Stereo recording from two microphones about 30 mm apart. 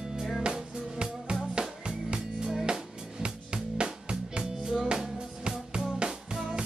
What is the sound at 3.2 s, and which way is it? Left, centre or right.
Music, right.